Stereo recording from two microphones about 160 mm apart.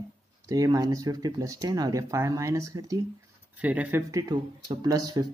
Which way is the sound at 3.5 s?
10° right (ahead or behind).